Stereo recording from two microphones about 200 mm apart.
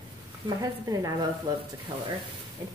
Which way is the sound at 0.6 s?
20° right (ahead or behind).